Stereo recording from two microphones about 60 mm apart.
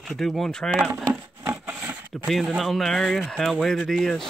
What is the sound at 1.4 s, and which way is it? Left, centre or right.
Wood, right.